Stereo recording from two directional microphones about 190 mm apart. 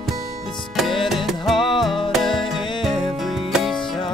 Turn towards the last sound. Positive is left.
turn(degrees=0)  # may be behind; listen again after turning